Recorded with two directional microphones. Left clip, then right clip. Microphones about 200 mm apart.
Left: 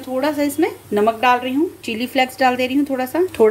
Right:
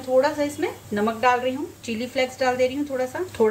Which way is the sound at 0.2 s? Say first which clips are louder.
Left 3 dB; 50° left (ahead or behind).